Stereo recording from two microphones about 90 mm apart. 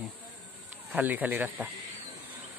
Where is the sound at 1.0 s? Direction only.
20° right (ahead or behind).